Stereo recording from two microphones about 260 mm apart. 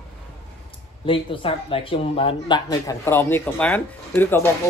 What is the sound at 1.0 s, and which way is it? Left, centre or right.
Speech, centre.